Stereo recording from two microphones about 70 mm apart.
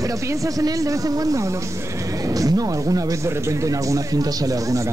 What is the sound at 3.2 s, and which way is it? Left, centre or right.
Speech, right.